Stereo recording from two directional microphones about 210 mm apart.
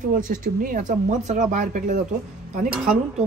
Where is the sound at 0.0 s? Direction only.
40° right (ahead or behind).